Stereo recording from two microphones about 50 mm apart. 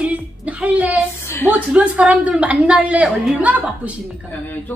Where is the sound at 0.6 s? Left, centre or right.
Right.